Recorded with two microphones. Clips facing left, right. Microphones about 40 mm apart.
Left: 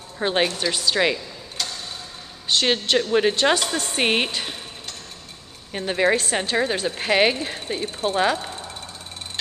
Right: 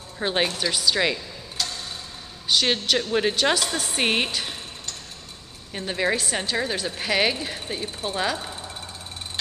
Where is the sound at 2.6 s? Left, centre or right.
Centre.